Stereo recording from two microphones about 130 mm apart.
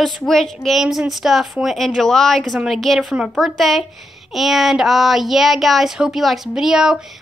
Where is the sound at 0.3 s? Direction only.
Centre (ahead or behind).